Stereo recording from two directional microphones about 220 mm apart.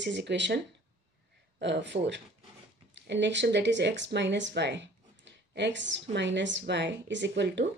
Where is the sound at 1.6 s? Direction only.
55° right (ahead or behind).